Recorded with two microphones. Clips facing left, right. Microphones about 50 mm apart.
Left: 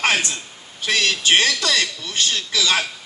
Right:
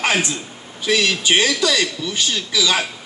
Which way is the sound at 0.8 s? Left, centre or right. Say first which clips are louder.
Right 2 dB; left.